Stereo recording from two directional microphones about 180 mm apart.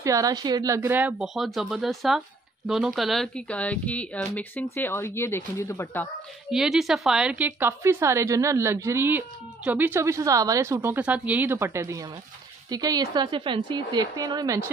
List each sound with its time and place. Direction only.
0.0 s speech: 20° right (ahead or behind); by 6.0 s 15° left (ahead or behind)
6.5 s a woman's voice: 5° right (ahead or behind); by 14.7 s 20° right (ahead or behind)